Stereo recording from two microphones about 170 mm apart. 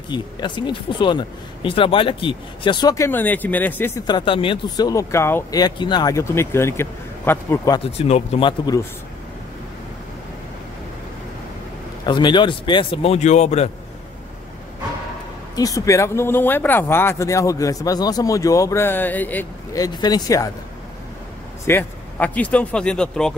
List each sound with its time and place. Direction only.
0.1 s speech: 25° left (ahead or behind)
4.1 s speech: 30° left (ahead or behind)
7.8 s speech: 35° left (ahead or behind)
12.1 s speech: 25° left (ahead or behind)
15.5 s speech: 20° left (ahead or behind)
19.8 s speech: 25° left (ahead or behind)
21.6 s speech: 10° left (ahead or behind)